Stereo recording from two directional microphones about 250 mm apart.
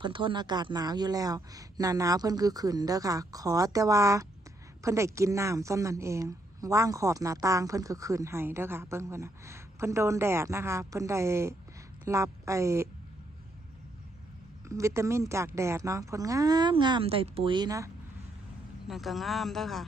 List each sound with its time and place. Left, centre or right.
0.0 s a woman's voice: centre
14.7 s a woman's voice: centre
18.9 s speech: centre